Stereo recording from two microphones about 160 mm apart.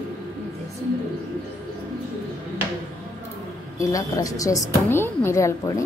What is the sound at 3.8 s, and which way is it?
A woman's voice, 20° left (ahead or behind).